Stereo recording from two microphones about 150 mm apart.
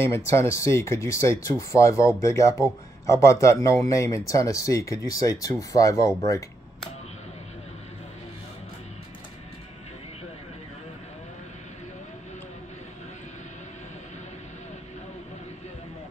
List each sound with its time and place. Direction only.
0.0 s speech: 15° left (ahead or behind)